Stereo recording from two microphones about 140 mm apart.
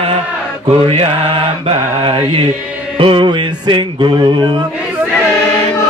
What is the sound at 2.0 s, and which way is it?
Music, 40° right (ahead or behind).